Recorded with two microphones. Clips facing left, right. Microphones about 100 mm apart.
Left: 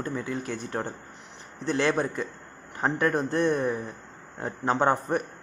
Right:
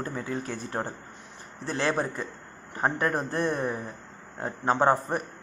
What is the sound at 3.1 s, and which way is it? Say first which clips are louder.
A man's voice: left 3 dB; 10° right (ahead or behind).